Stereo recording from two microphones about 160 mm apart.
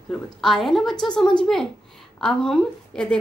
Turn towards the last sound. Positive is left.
turn(degrees=5)  # may be behind; listen again after turning